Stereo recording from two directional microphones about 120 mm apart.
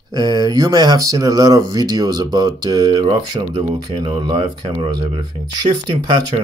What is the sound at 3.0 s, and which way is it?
Speech, 40° right (ahead or behind).